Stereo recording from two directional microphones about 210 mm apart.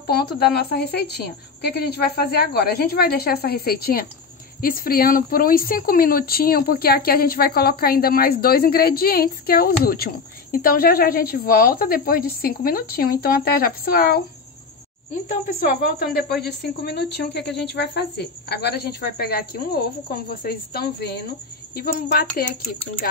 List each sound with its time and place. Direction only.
0.0 s speech: 50° left (ahead or behind)
15.4 s speech: 40° left (ahead or behind)